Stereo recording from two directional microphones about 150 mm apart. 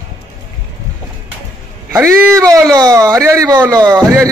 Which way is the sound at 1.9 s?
15° right (ahead or behind).